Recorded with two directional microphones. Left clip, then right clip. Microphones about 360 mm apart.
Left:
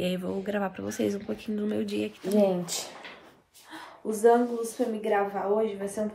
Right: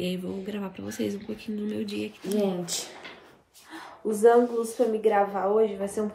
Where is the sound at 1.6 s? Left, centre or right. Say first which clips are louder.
Left 2 dB; centre.